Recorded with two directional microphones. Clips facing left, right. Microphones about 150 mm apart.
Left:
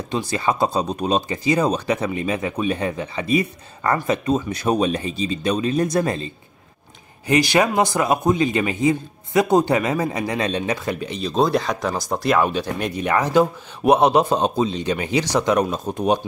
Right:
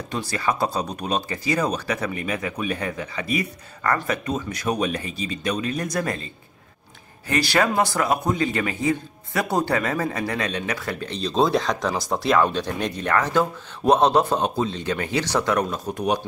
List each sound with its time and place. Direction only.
0.1 s speech: 20° left (ahead or behind)
7.2 s a man's voice: 20° left (ahead or behind)